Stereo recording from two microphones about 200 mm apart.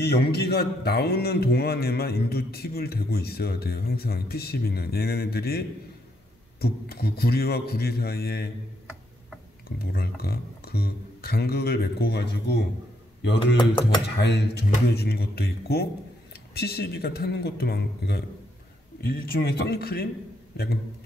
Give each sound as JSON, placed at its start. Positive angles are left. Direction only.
{"t": 0.0, "sound": "a man's voice", "side_deg": 50}
{"t": 9.7, "sound": "a man's voice", "side_deg": 50}
{"t": 14.0, "sound": "a man's voice", "side_deg": 55}